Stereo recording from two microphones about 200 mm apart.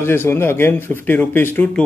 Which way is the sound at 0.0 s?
10° left (ahead or behind).